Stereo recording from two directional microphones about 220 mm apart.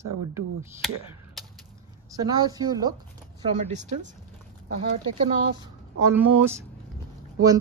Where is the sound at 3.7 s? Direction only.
35° right (ahead or behind).